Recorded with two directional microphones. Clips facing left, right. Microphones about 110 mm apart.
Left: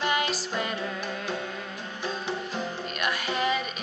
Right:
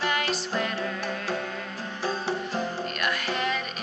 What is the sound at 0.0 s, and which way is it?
Music, centre (ahead or behind).